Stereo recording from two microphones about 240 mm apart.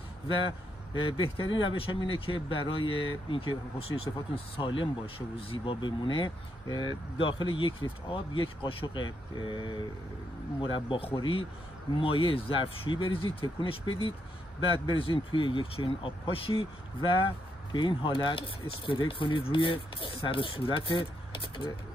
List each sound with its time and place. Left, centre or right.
0.9 s speech: left